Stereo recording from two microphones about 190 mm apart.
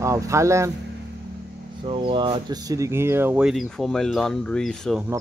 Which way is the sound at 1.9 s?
25° right (ahead or behind).